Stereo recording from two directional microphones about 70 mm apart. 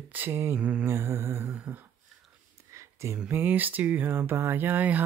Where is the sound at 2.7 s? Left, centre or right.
Right.